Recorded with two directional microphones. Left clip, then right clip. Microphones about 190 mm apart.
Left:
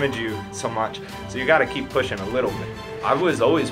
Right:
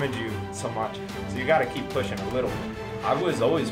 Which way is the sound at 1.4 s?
15° right (ahead or behind).